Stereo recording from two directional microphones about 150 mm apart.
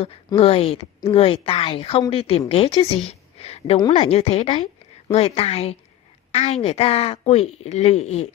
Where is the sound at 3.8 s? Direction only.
30° left (ahead or behind).